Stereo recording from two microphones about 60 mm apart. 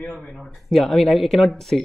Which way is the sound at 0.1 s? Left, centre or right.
Centre.